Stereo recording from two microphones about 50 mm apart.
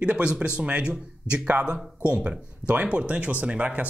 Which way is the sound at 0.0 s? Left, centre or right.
Right.